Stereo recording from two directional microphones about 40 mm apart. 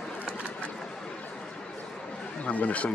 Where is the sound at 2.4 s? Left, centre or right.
Left.